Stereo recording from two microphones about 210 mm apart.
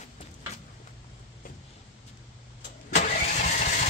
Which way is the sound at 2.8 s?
35° left (ahead or behind).